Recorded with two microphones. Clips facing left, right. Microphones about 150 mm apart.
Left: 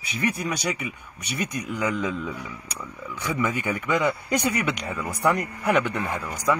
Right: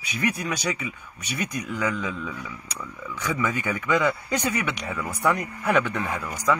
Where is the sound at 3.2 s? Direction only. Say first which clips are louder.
Left 1 dB; 15° left (ahead or behind).